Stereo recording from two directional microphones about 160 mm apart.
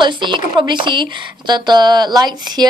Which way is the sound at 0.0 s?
30° right (ahead or behind).